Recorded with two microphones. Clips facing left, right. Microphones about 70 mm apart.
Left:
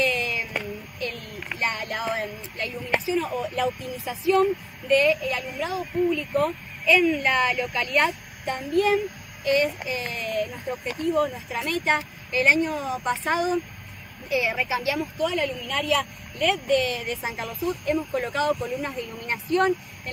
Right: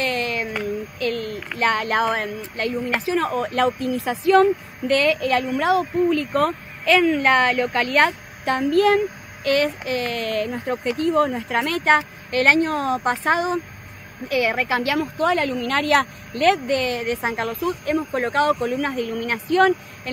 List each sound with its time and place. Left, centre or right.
0.0 s a sound: right
1.0 s a child's voice: right
7.1 s a child's voice: right
14.3 s a child's voice: right